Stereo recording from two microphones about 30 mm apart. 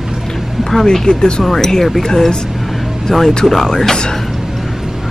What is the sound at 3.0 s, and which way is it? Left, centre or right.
Speech, centre.